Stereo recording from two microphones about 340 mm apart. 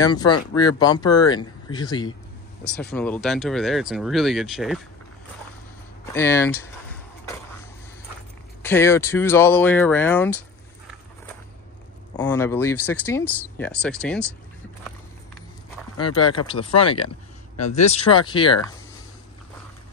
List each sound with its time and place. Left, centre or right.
0.0 s speech: centre
6.1 s speech: centre
8.6 s speech: centre
12.2 s speech: centre
16.4 s speech: centre